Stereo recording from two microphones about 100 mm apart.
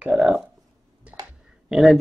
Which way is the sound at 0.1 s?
5° right (ahead or behind).